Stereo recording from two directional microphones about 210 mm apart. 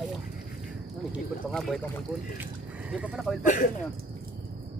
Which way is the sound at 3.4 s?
35° left (ahead or behind).